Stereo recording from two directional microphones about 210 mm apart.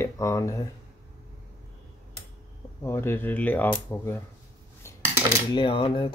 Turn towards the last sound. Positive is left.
turn(degrees=25)  # may be behind; listen again after turning